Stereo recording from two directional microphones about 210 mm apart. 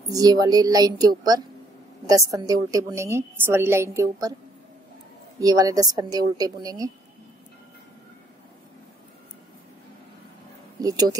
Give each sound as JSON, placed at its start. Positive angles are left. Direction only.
{"t": 0.1, "sound": "a woman's voice", "side_deg": -15}
{"t": 5.4, "sound": "a woman's voice", "side_deg": -15}
{"t": 10.8, "sound": "speech", "side_deg": -15}